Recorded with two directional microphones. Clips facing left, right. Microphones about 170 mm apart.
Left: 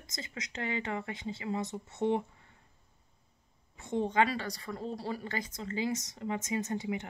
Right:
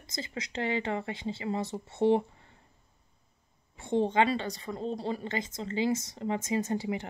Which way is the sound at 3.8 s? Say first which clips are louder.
Right 3 dB; 30° right (ahead or behind).